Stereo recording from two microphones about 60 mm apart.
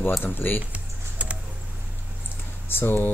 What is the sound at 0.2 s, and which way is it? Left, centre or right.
Speech, left.